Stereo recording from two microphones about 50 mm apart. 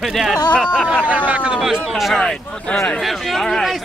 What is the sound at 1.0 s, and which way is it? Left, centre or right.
Speech, right.